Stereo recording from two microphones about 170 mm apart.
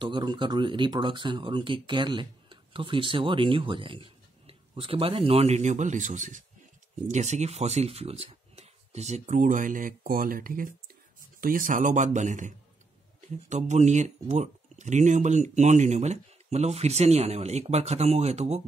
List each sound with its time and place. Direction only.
0.0 s speech: 25° right (ahead or behind)